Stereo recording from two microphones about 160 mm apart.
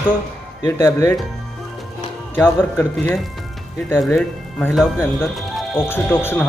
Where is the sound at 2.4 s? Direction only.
15° left (ahead or behind).